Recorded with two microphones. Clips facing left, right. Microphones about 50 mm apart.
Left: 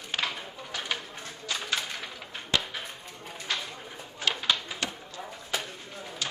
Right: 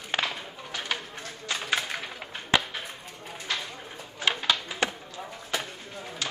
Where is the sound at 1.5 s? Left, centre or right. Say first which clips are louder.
Right 3 dB; centre.